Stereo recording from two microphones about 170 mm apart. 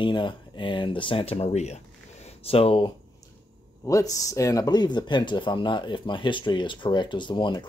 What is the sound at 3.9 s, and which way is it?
Speech, 20° left (ahead or behind).